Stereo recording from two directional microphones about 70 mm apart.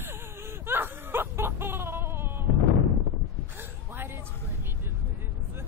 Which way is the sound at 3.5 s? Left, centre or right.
Right.